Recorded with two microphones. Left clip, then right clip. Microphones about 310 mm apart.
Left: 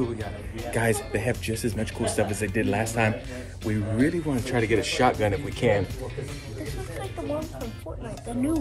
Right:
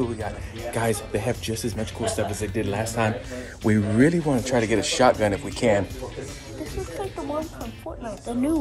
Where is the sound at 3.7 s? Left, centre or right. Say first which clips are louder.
Right 5 dB; centre.